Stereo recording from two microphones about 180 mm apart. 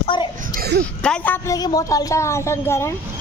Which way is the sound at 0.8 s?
5° left (ahead or behind).